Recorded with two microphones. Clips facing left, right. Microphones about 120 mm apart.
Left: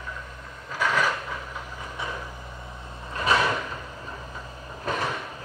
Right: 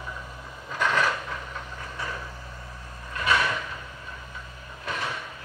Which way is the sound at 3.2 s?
30° left (ahead or behind).